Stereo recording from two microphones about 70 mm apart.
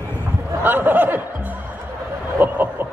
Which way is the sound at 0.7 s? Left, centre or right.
Right.